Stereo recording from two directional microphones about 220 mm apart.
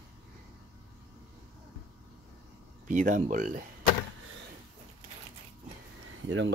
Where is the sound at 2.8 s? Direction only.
35° right (ahead or behind).